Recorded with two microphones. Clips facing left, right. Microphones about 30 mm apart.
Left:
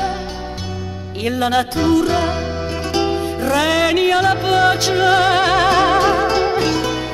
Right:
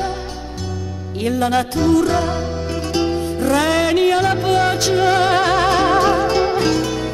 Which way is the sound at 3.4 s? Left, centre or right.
Centre.